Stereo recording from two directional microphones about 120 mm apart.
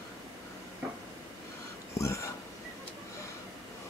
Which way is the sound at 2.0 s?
25° left (ahead or behind).